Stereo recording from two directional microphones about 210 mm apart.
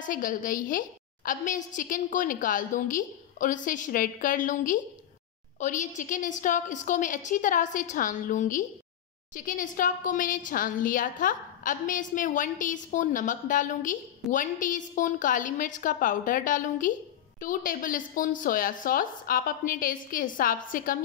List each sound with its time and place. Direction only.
0.0 s a woman's voice: 40° left (ahead or behind)